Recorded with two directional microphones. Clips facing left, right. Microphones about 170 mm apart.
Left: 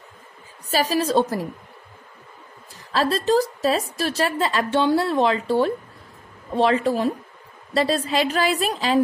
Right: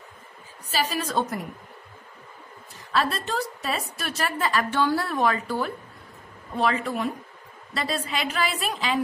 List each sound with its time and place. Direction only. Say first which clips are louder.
0.7 s a woman's voice: left 6 dB; 35° left (ahead or behind)
2.9 s a woman's voice: left 7 dB; 35° left (ahead or behind)